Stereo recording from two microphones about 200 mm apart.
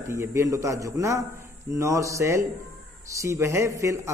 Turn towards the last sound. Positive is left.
turn(degrees=-15)  # may be behind; listen again after turning